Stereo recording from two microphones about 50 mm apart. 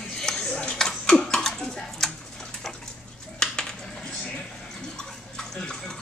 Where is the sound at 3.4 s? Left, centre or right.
Centre.